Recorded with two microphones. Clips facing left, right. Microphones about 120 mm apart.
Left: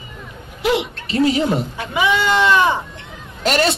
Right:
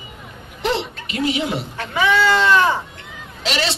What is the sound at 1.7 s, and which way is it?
Speech, 15° left (ahead or behind).